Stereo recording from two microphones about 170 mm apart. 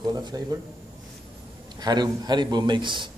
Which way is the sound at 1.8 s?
25° right (ahead or behind).